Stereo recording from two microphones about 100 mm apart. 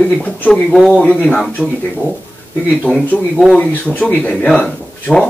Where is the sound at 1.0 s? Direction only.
15° left (ahead or behind).